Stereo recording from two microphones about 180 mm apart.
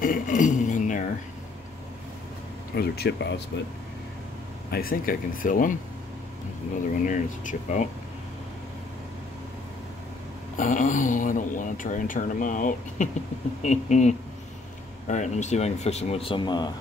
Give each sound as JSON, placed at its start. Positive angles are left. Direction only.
{"t": 0.0, "sound": "a sound", "side_deg": 50}
{"t": 2.7, "sound": "speech", "side_deg": 60}
{"t": 4.6, "sound": "speech", "side_deg": 55}
{"t": 7.1, "sound": "speech", "side_deg": 45}
{"t": 10.6, "sound": "speech", "side_deg": 45}